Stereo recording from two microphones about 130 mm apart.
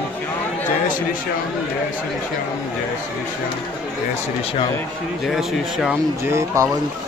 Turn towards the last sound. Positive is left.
turn(degrees=-25)  # may be behind; listen again after turning